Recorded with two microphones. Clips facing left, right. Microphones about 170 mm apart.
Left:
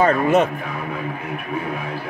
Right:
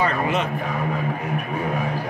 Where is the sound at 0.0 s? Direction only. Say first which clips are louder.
Left 6 dB; 45° left (ahead or behind).